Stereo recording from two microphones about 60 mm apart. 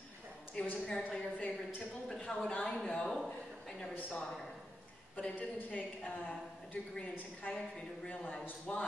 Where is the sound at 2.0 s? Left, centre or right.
Centre.